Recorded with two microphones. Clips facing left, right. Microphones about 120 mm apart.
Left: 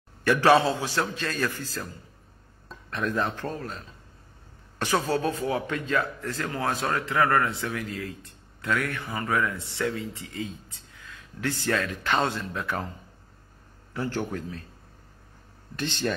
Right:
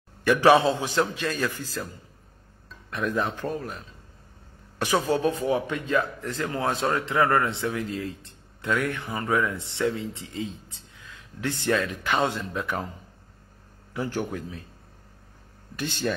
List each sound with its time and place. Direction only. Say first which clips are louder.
0.2 s a man's voice: right 2 dB; 15° right (ahead or behind)
2.9 s a man's voice: right 1 dB; 10° right (ahead or behind)
13.9 s a man's voice: right 1 dB; 15° right (ahead or behind)
15.7 s a man's voice: even; 10° right (ahead or behind)